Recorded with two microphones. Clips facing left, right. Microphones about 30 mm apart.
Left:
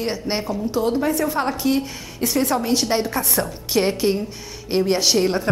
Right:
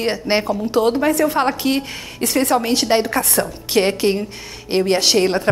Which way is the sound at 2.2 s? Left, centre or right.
Right.